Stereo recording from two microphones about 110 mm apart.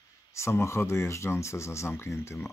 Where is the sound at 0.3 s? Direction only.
25° left (ahead or behind).